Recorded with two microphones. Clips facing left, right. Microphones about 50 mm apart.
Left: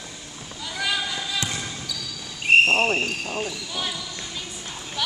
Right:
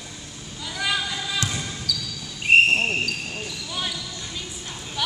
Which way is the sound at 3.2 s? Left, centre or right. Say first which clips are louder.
Left 4 dB; left.